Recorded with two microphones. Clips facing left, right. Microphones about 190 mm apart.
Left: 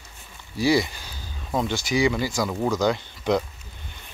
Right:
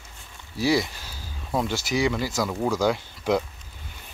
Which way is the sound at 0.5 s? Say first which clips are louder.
Left 2 dB; centre (ahead or behind).